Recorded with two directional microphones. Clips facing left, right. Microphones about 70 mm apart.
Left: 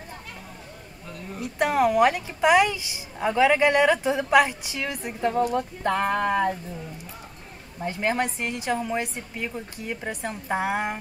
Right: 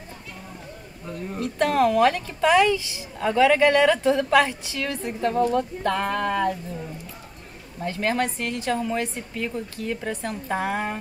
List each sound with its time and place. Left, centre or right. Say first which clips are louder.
1.4 s a woman's voice: right 1 dB; centre
7.8 s a woman's voice: right 1 dB; centre